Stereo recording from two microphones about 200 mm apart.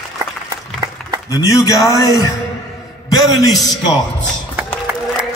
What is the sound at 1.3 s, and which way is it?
Speech, 15° left (ahead or behind).